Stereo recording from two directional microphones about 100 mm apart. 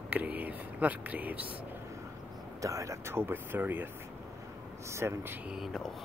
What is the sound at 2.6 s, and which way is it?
Speech, 30° right (ahead or behind).